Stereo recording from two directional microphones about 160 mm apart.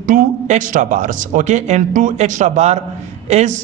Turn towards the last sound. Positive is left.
turn(degrees=-45)  # may be behind; listen again after turning